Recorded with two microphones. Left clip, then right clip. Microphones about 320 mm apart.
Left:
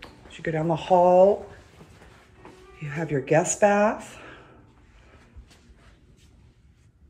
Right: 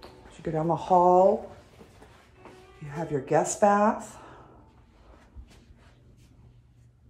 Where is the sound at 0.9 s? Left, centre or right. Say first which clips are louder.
Left 2 dB; right.